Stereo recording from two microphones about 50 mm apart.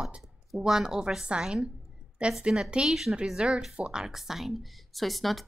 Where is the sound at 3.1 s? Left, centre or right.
Centre.